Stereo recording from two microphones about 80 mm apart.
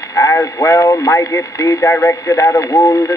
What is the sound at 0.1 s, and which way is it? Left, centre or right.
Speech, left.